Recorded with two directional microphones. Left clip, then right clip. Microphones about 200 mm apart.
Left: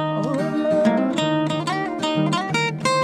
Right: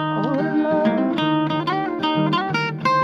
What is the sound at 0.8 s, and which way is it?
Music, 65° left (ahead or behind).